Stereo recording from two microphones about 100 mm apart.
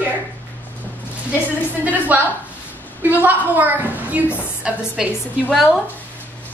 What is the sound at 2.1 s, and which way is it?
A woman's voice, 20° right (ahead or behind).